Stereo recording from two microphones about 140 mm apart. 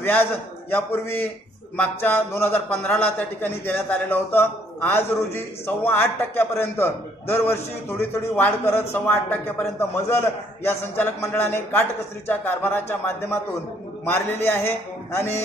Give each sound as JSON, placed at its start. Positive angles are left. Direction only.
{"t": 0.0, "sound": "a man's voice", "side_deg": 15}